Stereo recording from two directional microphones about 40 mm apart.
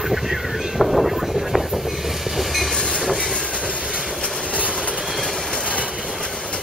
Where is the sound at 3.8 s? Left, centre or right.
Centre.